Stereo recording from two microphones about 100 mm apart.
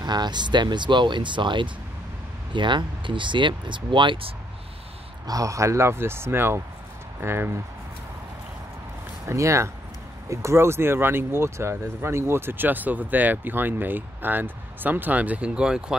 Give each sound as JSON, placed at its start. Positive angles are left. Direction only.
{"t": 0.0, "sound": "speech", "side_deg": -45}
{"t": 5.2, "sound": "speech", "side_deg": -35}
{"t": 9.3, "sound": "speech", "side_deg": -30}